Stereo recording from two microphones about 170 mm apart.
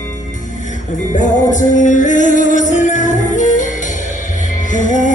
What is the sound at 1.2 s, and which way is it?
Music, 50° left (ahead or behind).